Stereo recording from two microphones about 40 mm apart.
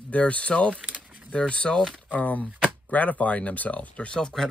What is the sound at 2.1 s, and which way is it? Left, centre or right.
Speech, left.